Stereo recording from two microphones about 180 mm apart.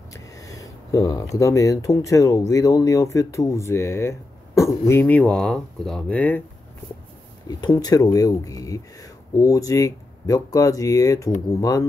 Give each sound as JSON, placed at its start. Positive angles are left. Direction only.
{"t": 0.1, "sound": "speech", "side_deg": 20}
{"t": 7.4, "sound": "speech", "side_deg": 20}